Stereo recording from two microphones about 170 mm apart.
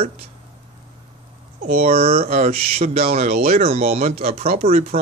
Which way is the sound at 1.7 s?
35° right (ahead or behind).